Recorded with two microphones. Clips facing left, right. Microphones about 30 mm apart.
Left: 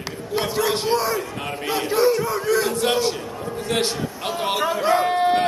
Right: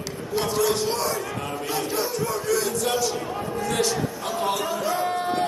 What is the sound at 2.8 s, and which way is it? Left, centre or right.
A man's voice, left.